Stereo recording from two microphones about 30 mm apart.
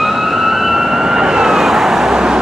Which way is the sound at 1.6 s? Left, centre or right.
Centre.